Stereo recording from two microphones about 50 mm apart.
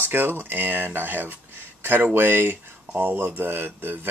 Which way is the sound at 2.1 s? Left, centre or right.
Right.